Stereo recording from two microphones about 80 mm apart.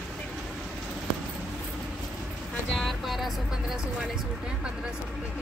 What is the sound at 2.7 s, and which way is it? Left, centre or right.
Speech, centre.